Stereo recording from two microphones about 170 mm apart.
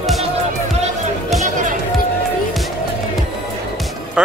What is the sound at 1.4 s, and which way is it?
Music, 50° right (ahead or behind).